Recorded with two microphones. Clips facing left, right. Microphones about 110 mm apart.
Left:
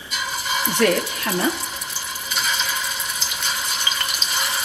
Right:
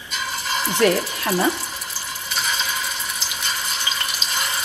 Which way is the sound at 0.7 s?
30° right (ahead or behind).